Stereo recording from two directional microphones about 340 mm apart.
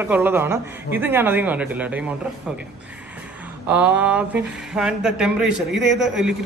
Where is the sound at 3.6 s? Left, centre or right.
Centre.